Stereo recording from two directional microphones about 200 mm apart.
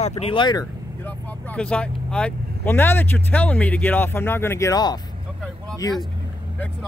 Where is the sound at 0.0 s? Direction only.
30° left (ahead or behind).